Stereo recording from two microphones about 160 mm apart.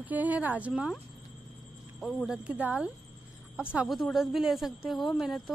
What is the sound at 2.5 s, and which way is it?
A woman's voice, 10° right (ahead or behind).